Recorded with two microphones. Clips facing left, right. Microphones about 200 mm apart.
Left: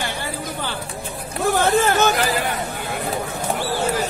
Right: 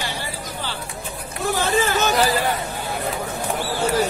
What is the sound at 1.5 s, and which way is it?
Hubbub, 55° left (ahead or behind).